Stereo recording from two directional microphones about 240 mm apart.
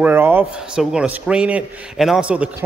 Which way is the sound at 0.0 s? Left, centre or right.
Centre.